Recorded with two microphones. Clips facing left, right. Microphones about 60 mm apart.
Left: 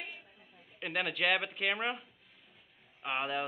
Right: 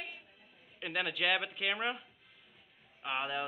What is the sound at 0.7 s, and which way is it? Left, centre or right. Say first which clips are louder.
Speech: left 1 dB; centre.